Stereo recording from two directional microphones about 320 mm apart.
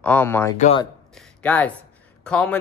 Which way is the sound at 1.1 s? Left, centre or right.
Centre.